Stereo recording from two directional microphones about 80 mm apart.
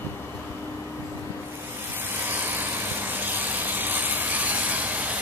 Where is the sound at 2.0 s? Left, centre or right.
Right.